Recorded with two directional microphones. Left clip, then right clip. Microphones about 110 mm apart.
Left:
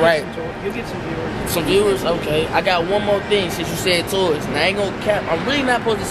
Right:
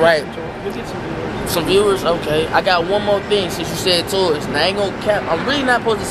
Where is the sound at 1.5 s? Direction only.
15° right (ahead or behind).